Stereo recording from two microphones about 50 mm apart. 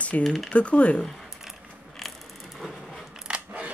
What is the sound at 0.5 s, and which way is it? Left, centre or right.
Speech, left.